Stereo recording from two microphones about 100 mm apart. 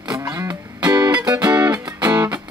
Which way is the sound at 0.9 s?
45° right (ahead or behind).